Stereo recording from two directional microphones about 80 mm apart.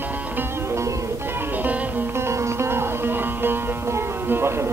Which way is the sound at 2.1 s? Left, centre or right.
Right.